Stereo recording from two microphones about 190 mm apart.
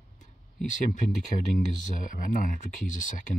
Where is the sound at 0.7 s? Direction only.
40° left (ahead or behind).